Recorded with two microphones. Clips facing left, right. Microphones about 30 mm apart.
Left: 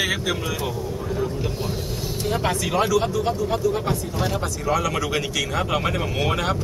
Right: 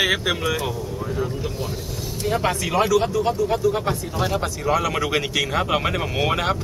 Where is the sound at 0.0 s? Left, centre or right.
Centre.